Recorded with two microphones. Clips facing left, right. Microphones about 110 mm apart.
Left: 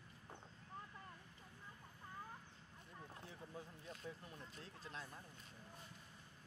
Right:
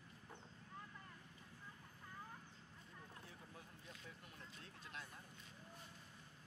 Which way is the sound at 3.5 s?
35° left (ahead or behind).